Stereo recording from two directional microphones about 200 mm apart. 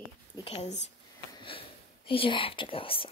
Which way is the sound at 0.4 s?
30° left (ahead or behind).